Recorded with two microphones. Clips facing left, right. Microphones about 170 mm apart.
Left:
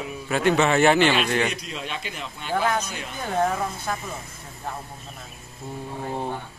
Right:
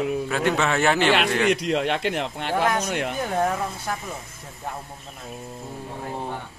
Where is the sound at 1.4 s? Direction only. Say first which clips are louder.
Right 9 dB; 75° right (ahead or behind).